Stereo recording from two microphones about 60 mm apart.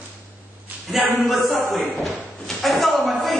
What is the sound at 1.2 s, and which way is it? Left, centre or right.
Speech, centre.